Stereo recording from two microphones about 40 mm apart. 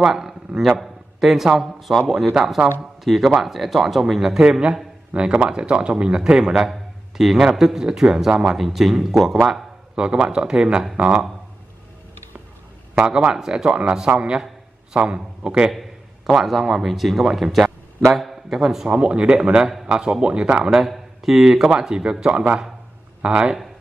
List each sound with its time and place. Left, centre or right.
0.0 s a man's voice: centre
4.4 s speech: right
8.5 s speech: centre
9.9 s speech: right
13.3 s speech: centre
13.7 s speech: right
15.7 s a man's voice: centre
18.9 s speech: right
20.9 s speech: centre
22.3 s speech: right